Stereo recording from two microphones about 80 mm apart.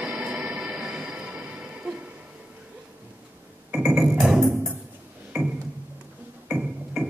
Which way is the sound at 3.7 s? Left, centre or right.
Centre.